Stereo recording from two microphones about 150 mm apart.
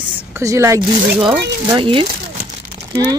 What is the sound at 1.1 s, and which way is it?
Speech, 35° right (ahead or behind).